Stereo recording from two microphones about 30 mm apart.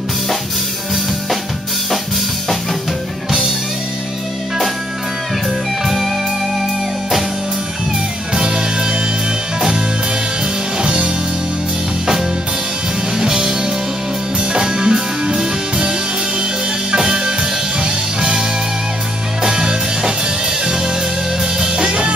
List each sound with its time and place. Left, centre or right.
5.9 s music: centre
8.4 s music: right
10.8 s music: right
13.2 s music: right
16.9 s music: right
19.4 s music: right
21.5 s music: right